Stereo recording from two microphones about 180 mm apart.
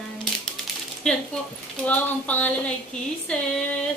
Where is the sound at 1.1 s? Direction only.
5° left (ahead or behind).